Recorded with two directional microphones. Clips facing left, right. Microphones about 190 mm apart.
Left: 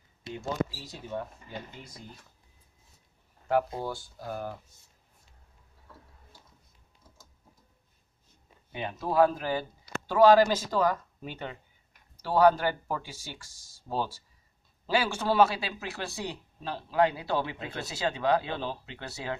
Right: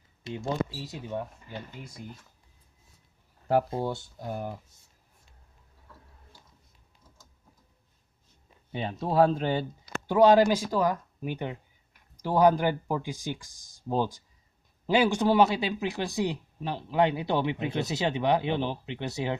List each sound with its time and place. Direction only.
0.8 s speech: 15° right (ahead or behind)
3.4 s speech: 30° right (ahead or behind)
8.7 s speech: 30° right (ahead or behind)